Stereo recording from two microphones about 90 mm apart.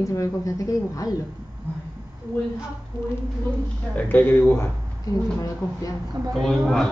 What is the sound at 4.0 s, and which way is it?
Speech, 20° left (ahead or behind).